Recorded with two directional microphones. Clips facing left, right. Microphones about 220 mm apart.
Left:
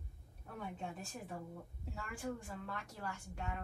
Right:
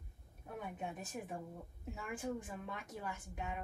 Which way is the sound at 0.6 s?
20° right (ahead or behind).